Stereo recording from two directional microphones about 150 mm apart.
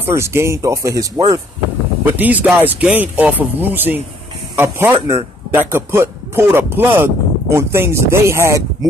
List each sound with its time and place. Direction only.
0.0 s speech: 15° right (ahead or behind)
2.1 s a man's voice: 10° right (ahead or behind)